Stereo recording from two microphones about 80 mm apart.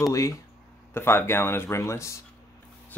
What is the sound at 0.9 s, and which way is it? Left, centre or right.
Speech, left.